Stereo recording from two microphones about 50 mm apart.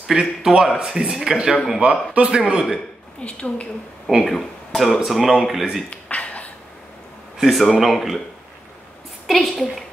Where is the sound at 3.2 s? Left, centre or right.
Left.